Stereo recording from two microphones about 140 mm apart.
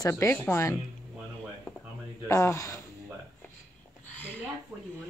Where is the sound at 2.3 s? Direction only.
20° left (ahead or behind).